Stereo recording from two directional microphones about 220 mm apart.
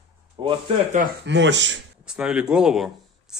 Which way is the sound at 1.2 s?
55° right (ahead or behind).